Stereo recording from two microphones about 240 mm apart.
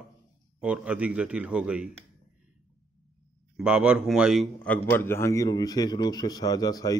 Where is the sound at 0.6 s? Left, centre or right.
Centre.